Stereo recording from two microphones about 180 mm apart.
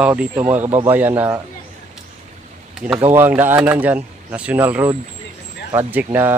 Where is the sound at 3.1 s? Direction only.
10° right (ahead or behind).